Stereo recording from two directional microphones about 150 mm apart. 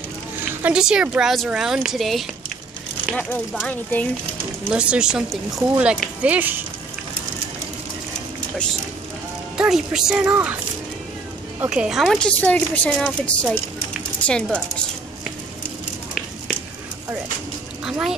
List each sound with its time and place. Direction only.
0.6 s speech: 5° right (ahead or behind)
3.6 s a woman's voice: 10° left (ahead or behind)
4.6 s a woman's voice: 5° right (ahead or behind)
9.6 s a woman's voice: 5° right (ahead or behind)
11.6 s a woman's voice: 5° right (ahead or behind)
17.8 s a sound: 5° right (ahead or behind)